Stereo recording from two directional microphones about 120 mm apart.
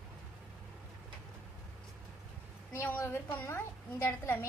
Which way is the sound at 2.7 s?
15° left (ahead or behind).